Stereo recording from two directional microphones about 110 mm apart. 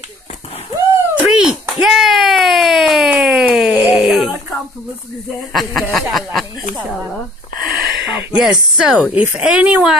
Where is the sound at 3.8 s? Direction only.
60° left (ahead or behind).